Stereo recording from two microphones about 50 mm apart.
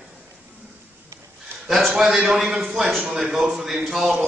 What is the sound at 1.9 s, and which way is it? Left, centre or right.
A man's voice, centre.